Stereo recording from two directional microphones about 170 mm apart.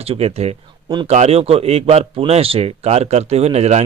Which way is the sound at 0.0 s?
35° right (ahead or behind).